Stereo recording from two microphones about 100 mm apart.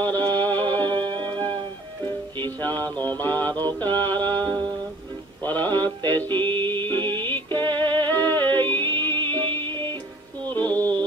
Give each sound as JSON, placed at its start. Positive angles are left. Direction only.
{"t": 0.0, "sound": "music", "side_deg": 20}
{"t": 2.4, "sound": "music", "side_deg": 20}
{"t": 5.4, "sound": "male singing", "side_deg": 20}
{"t": 6.3, "sound": "music", "side_deg": -55}
{"t": 7.9, "sound": "music", "side_deg": 20}
{"t": 8.5, "sound": "music", "side_deg": -50}
{"t": 10.5, "sound": "music", "side_deg": 20}